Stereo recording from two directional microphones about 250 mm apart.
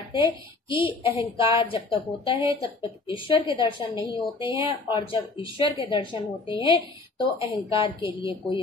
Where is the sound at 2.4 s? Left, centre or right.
Left.